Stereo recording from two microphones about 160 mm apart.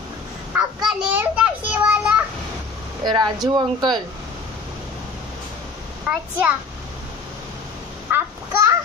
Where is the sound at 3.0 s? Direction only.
25° right (ahead or behind).